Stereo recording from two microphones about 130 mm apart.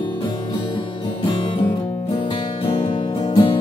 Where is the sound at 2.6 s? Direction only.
40° left (ahead or behind).